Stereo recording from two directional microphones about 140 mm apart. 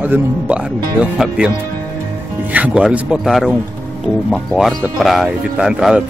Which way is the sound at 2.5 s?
10° right (ahead or behind).